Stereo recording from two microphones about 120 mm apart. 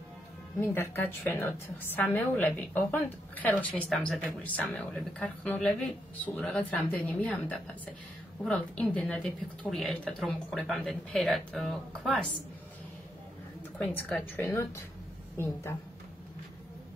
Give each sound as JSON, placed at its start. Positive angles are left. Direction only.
{"t": 0.6, "sound": "a woman's voice", "side_deg": 20}
{"t": 13.7, "sound": "a woman's voice", "side_deg": 10}
{"t": 14.4, "sound": "a woman's voice", "side_deg": 25}